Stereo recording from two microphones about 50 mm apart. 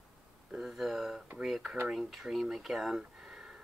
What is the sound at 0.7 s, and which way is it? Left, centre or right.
Speech, centre.